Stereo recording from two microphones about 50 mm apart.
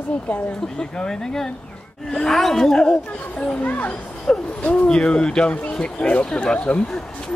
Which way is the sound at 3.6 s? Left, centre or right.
Left.